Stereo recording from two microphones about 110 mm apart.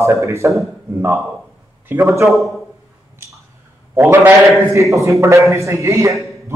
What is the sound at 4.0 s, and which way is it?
A man's voice, 15° right (ahead or behind).